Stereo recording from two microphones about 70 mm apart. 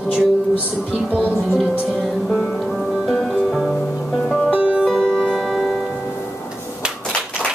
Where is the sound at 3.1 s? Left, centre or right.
Centre.